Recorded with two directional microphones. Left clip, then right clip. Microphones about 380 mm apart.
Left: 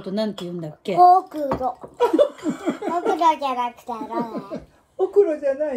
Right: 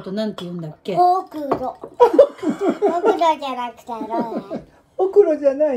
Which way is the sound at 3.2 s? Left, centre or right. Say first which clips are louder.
Even; centre.